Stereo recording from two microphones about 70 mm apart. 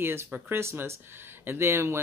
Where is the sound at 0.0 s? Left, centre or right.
Right.